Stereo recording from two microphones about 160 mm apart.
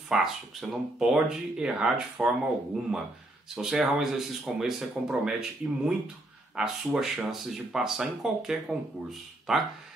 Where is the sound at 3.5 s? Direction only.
5° right (ahead or behind).